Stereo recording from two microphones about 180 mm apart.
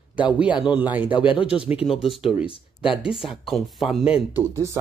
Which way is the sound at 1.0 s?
30° left (ahead or behind).